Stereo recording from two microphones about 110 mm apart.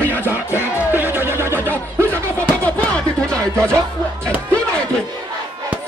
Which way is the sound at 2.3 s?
15° left (ahead or behind).